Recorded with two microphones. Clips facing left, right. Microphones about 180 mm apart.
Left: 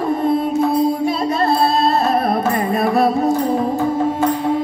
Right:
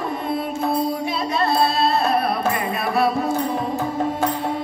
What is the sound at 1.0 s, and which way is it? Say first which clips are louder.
Music: left 5 dB; 40° left (ahead or behind).